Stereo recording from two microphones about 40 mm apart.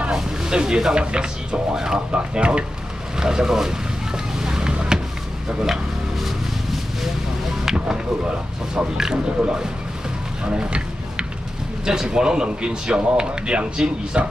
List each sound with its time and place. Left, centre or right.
0.1 s speech: centre
3.2 s speech: centre
4.4 s boat: centre
8.7 s speech: centre
10.4 s a sound: right
11.8 s speech: centre